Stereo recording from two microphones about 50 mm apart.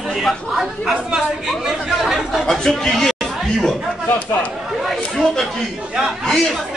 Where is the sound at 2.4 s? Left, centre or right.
Centre.